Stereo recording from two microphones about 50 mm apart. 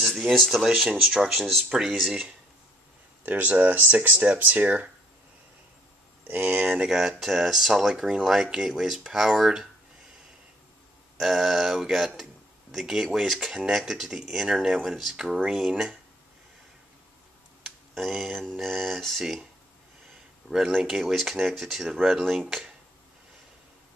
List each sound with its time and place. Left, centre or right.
0.3 s speech: centre
0.7 s speech: centre
3.3 s speech: right
6.3 s speech: right
6.8 s speech: centre
11.1 s speech: centre
15.4 s speech: centre
17.6 s a sound: centre
18.4 s speech: centre
20.4 s speech: centre